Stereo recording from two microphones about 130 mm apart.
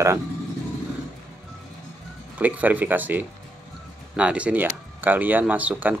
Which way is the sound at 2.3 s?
10° right (ahead or behind).